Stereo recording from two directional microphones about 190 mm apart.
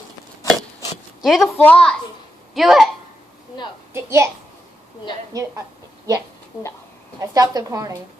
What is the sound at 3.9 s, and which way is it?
Speech, 15° right (ahead or behind).